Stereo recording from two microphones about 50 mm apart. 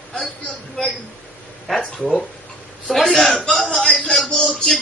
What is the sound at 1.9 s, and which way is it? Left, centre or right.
Speech, centre.